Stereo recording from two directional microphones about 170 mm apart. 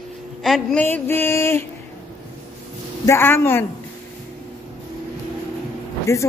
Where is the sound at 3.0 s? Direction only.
15° left (ahead or behind).